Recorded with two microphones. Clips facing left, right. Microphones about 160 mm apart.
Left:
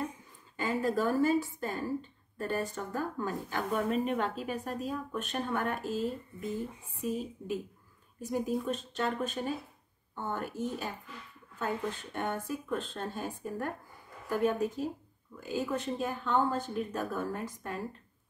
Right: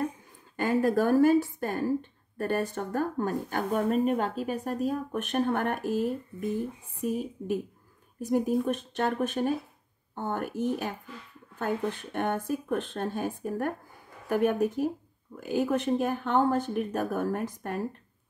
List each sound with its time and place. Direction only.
0.6 s speech: 60° right (ahead or behind)
7.2 s speech: 55° right (ahead or behind)